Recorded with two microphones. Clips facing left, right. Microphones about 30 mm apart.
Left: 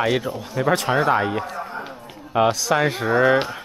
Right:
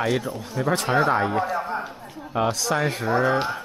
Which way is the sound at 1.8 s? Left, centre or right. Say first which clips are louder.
Even; left.